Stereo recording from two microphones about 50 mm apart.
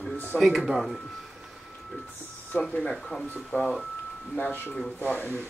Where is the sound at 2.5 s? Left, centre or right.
Left.